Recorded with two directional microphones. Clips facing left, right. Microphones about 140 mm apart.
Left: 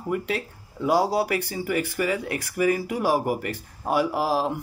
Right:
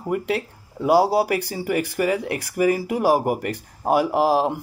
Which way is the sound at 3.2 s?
50° right (ahead or behind).